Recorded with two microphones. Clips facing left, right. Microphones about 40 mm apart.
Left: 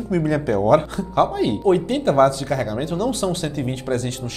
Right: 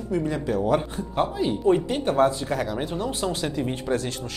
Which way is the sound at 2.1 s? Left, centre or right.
Left.